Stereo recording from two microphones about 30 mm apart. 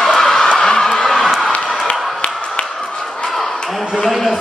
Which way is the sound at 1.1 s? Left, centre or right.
Centre.